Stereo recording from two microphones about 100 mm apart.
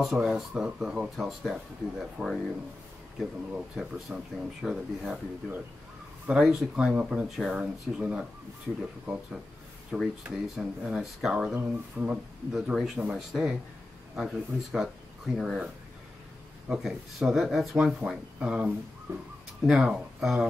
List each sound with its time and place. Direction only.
0.0 s speech: 5° right (ahead or behind)
3.5 s speech: 5° right (ahead or behind)
6.2 s speech: 5° right (ahead or behind)
9.9 s speech: centre (ahead or behind)
19.1 s speech: 25° right (ahead or behind)
19.7 s speech: 5° right (ahead or behind)